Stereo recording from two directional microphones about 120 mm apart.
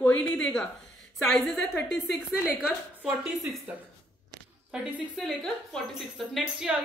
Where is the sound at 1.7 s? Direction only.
25° left (ahead or behind).